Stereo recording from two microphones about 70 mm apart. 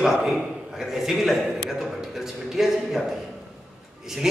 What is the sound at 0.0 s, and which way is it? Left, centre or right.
A man's voice, centre.